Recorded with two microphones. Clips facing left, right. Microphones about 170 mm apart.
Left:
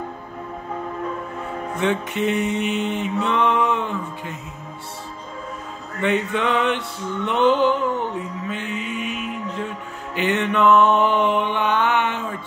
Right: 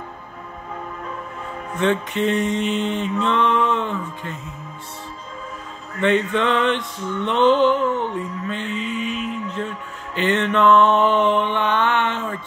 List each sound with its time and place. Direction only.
1.8 s mantra: 10° left (ahead or behind)
5.9 s mantra: 10° left (ahead or behind)
10.1 s mantra: 10° left (ahead or behind)